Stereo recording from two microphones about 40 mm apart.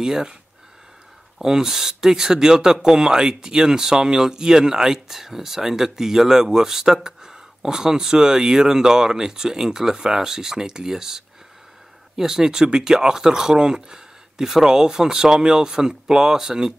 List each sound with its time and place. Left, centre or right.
0.0 s speech: centre
1.4 s speech: centre